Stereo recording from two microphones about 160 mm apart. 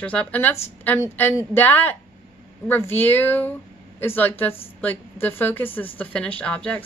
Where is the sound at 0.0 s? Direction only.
10° left (ahead or behind).